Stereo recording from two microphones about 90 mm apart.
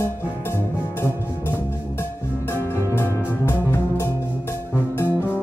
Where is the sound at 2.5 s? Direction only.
25° left (ahead or behind).